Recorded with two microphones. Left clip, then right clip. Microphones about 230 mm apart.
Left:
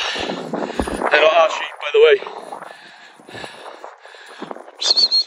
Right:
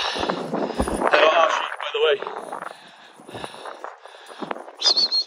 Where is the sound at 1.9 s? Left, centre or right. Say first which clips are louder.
Left 9 dB; centre.